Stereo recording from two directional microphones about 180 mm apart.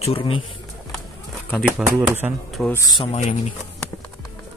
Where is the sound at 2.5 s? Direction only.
Centre (ahead or behind).